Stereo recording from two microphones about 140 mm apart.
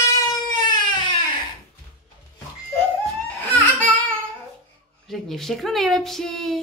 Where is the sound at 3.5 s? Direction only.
10° left (ahead or behind).